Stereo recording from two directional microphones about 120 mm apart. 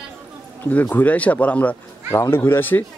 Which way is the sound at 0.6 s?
15° left (ahead or behind).